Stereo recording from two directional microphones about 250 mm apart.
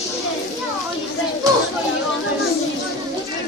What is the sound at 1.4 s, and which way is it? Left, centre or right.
Chatter, centre.